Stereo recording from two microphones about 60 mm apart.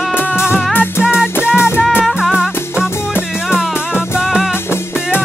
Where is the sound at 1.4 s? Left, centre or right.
Left.